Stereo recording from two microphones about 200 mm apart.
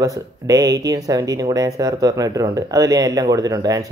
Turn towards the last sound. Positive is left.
turn(degrees=-15)  # may be behind; listen again after turning